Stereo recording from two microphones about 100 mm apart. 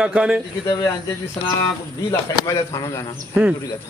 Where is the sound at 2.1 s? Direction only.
30° left (ahead or behind).